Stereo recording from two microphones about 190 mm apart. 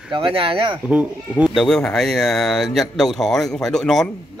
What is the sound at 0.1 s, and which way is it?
Speech, 30° right (ahead or behind).